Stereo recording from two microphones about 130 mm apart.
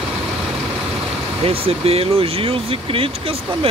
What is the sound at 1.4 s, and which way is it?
Speech, 45° right (ahead or behind).